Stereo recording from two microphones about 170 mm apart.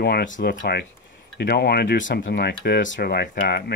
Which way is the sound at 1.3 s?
75° left (ahead or behind).